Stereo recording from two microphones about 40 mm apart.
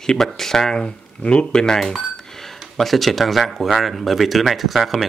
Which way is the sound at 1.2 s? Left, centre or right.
Left.